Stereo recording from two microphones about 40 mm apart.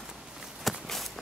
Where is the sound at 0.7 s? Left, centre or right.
Centre.